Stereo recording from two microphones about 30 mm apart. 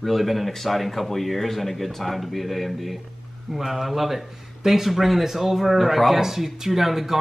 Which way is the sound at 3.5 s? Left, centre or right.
Centre.